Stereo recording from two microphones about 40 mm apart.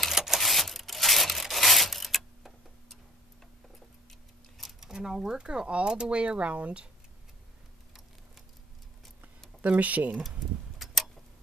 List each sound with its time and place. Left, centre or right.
0.1 s a sound: centre
0.4 s a sound: centre
4.1 s clock: centre
4.7 s speech: centre; by 6.9 s right
9.6 s speech: right
10.8 s tick-tock: centre